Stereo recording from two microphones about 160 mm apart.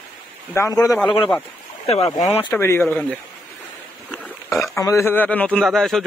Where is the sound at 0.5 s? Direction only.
20° left (ahead or behind).